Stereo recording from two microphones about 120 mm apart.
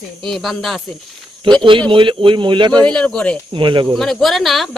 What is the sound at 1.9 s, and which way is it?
Speech, 45° right (ahead or behind).